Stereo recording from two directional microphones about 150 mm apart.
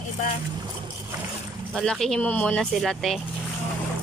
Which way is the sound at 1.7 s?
5° left (ahead or behind).